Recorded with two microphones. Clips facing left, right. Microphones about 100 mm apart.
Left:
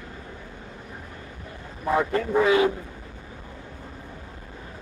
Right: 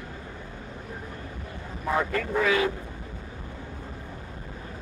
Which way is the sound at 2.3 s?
25° left (ahead or behind).